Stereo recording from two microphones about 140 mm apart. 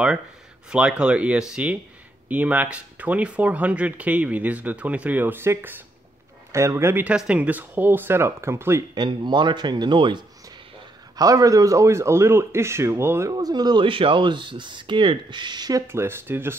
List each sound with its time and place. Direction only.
0.7 s speech: 5° right (ahead or behind)
8.9 s speech: 30° right (ahead or behind)
15.9 s speech: 15° right (ahead or behind)